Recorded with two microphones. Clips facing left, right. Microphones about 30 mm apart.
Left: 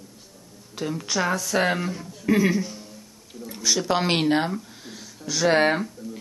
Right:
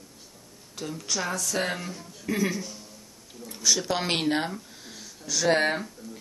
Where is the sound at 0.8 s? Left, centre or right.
Left.